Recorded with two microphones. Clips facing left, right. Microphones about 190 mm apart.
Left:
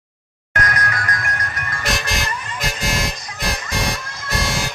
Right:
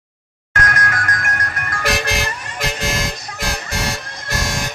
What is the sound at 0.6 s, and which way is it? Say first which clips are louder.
Music: right 1 dB; 50° right (ahead or behind).